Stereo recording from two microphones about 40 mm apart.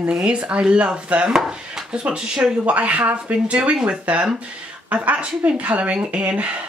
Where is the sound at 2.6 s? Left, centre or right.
Right.